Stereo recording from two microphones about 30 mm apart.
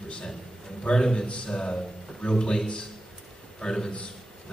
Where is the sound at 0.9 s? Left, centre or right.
Left.